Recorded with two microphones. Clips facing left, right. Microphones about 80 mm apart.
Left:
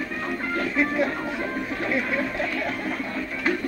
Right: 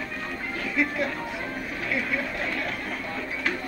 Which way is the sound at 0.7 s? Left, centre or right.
Left.